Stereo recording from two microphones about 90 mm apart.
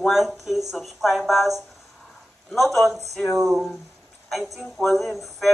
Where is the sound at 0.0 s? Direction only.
Centre (ahead or behind).